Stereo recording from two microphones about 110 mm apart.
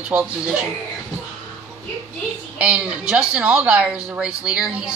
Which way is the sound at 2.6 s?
10° right (ahead or behind).